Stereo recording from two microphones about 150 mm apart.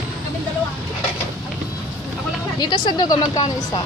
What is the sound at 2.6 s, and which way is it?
Speech, 30° left (ahead or behind).